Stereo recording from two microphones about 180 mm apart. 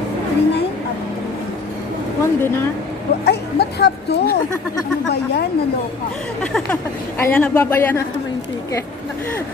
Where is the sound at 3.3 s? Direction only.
65° left (ahead or behind).